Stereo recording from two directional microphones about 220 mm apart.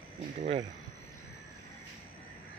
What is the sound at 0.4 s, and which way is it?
Speech, 30° right (ahead or behind).